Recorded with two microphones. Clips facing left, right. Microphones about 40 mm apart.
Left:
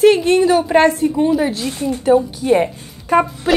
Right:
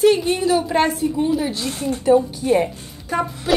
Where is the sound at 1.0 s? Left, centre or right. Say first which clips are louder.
Left 4 dB; left.